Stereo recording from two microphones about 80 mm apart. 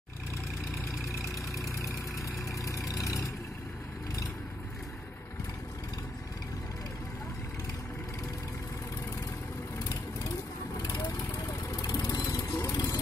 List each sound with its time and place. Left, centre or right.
1.5 s vehicle: left
10.8 s vehicle: left
12.7 s vehicle: left